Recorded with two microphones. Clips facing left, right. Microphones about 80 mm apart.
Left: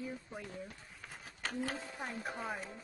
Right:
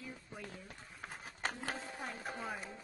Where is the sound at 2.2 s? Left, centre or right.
Left.